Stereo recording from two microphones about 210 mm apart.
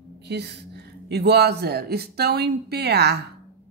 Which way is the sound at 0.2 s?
50° right (ahead or behind).